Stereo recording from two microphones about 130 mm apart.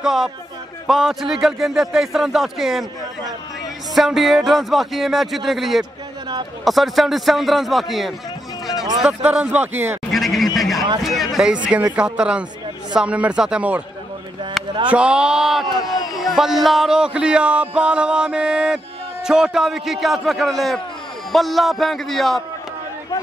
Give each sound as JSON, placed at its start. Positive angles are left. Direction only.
{"t": 0.0, "sound": "speech", "side_deg": 0}
{"t": 3.9, "sound": "speech", "side_deg": 0}
{"t": 10.1, "sound": "a sound", "side_deg": 0}
{"t": 11.0, "sound": "speech", "side_deg": 0}
{"t": 14.6, "sound": "a sound", "side_deg": 0}
{"t": 14.9, "sound": "speech", "side_deg": -10}
{"t": 15.8, "sound": "a man's voice", "side_deg": 30}
{"t": 16.1, "sound": "speech", "side_deg": 0}